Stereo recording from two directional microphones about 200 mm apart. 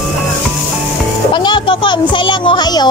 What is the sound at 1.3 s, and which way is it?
A child's voice, 25° left (ahead or behind).